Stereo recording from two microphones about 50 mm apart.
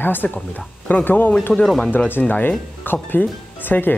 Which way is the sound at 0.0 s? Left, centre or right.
Left.